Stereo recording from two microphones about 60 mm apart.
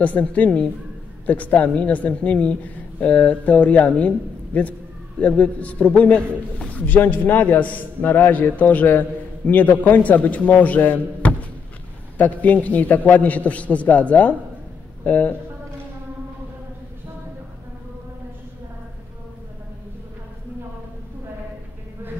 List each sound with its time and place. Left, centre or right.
0.0 s a woman's voice: left